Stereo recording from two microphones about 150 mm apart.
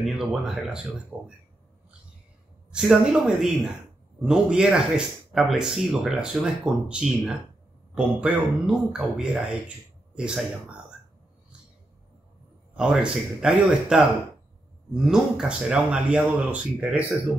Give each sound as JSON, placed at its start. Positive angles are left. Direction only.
{"t": 0.0, "sound": "speech", "side_deg": 0}
{"t": 2.7, "sound": "speech", "side_deg": 0}
{"t": 12.7, "sound": "speech", "side_deg": -5}
{"t": 15.0, "sound": "speech", "side_deg": -5}